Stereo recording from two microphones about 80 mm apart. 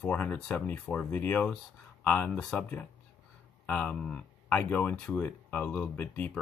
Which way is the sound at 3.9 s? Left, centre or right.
Centre.